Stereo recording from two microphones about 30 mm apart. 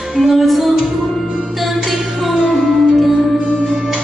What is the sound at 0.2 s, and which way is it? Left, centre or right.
Music, centre.